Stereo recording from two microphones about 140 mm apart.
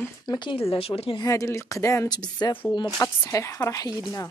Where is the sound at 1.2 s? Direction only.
25° left (ahead or behind).